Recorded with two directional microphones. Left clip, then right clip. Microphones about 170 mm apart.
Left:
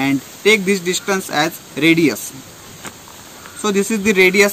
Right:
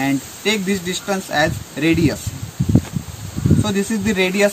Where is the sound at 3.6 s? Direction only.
15° right (ahead or behind).